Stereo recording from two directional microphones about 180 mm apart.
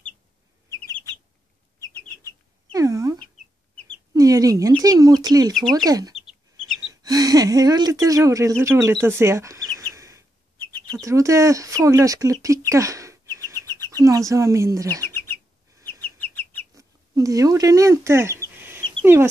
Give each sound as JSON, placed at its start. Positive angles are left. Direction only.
{"t": 2.7, "sound": "a sound", "side_deg": -20}
{"t": 4.1, "sound": "chicken", "side_deg": -20}
{"t": 4.8, "sound": "speech", "side_deg": -20}
{"t": 5.5, "sound": "speech", "side_deg": 0}
{"t": 5.9, "sound": "speech", "side_deg": -20}
{"t": 9.8, "sound": "bird", "side_deg": -15}
{"t": 10.9, "sound": "speech", "side_deg": -20}
{"t": 16.0, "sound": "chicken", "side_deg": 10}
{"t": 16.7, "sound": "speech", "side_deg": -20}